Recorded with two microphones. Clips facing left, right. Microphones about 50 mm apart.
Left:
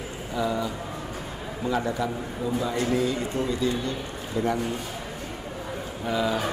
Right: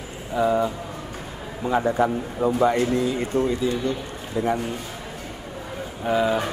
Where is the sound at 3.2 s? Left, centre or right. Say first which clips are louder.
Right 5 dB; right.